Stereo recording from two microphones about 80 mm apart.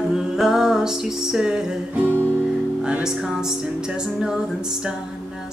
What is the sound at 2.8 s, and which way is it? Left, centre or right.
Music, centre.